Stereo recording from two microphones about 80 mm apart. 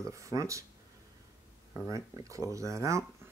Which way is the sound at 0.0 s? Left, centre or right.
Right.